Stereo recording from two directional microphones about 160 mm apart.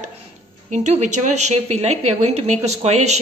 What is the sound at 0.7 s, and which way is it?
A woman's voice, 45° right (ahead or behind).